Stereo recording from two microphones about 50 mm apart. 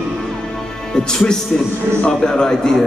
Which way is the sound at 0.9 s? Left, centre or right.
Centre.